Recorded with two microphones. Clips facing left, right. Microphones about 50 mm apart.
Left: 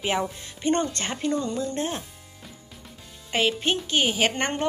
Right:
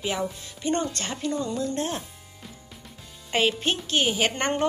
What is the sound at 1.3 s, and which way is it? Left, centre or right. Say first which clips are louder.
Speech: right 1 dB; centre.